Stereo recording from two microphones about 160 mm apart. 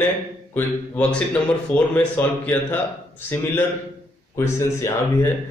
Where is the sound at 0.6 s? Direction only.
10° left (ahead or behind).